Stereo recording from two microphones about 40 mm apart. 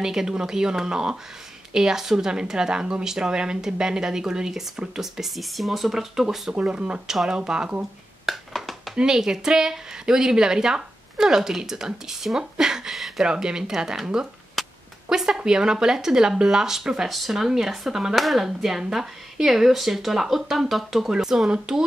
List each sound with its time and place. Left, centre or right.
0.0 s a woman's voice: centre
6.5 s speech: right
8.3 s a sound: centre
8.9 s a woman's voice: centre
13.2 s a woman's voice: centre
14.6 s a sound: centre
15.0 s a woman's voice: centre